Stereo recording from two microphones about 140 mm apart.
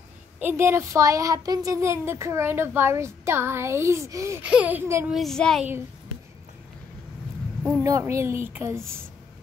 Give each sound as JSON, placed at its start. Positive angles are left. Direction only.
{"t": 0.4, "sound": "speech", "side_deg": -15}
{"t": 4.4, "sound": "speech", "side_deg": -10}
{"t": 5.1, "sound": "speech", "side_deg": 5}
{"t": 7.8, "sound": "speech", "side_deg": -20}